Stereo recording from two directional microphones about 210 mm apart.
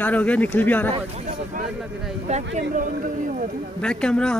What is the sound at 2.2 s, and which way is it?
Speech, 35° right (ahead or behind).